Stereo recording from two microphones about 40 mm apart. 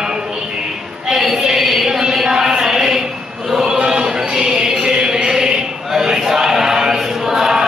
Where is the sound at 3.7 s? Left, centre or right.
Centre.